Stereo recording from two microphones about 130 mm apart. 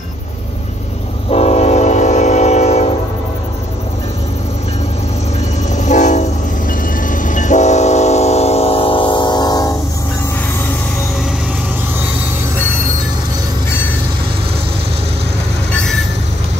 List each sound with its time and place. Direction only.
1.3 s train: 55° left (ahead or behind)
5.8 s train: 70° left (ahead or behind); by 9.8 s 30° left (ahead or behind)
15.7 s train: 5° left (ahead or behind)